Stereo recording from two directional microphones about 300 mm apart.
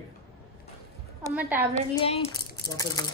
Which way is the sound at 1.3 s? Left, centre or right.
Centre.